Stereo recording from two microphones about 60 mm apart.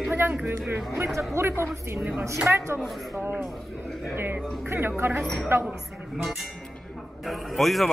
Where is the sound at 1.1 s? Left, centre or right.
Right.